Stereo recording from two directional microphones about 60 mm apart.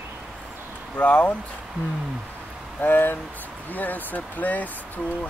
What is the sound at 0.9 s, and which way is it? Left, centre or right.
Speech, left.